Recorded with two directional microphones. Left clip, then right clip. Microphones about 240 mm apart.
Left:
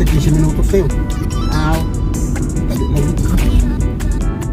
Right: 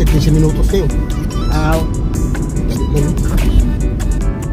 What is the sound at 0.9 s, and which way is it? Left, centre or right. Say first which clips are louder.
Speech: even; centre.